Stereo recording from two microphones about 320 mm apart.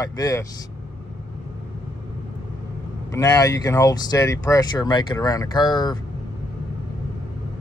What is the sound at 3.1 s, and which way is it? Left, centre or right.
Speech, centre.